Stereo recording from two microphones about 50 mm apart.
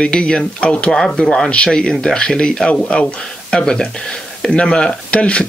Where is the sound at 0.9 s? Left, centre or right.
Centre.